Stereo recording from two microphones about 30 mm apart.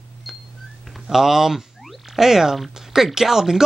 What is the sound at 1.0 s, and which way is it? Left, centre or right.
Speech, centre.